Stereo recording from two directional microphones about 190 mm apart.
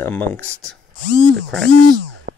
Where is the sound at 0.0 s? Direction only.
10° left (ahead or behind).